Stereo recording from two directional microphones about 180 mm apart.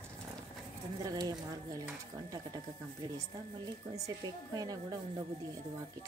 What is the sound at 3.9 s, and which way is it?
A woman's voice, 20° right (ahead or behind).